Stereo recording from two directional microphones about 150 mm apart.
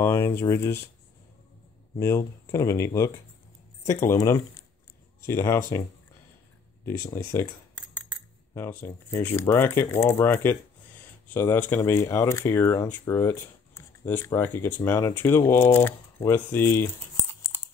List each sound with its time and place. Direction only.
0.0 s speech: 15° left (ahead or behind)
2.0 s speech: 20° left (ahead or behind)
7.3 s speech: 15° left (ahead or behind)